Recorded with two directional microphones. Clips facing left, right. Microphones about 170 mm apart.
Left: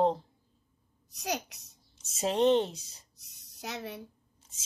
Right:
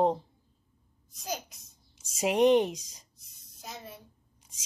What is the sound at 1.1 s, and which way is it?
Speech, 70° left (ahead or behind).